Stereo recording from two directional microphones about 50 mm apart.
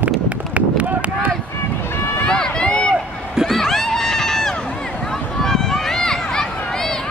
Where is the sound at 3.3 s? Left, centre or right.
Centre.